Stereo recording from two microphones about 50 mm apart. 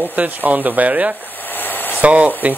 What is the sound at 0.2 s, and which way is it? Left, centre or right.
Speech, right.